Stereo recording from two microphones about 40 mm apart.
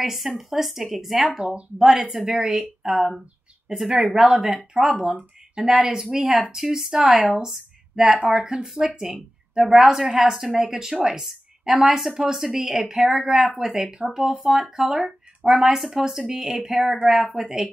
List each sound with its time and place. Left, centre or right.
0.0 s a woman's voice: centre
4.3 s speech: centre
10.0 s speech: centre